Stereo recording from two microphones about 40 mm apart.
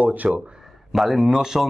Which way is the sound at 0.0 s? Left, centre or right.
Right.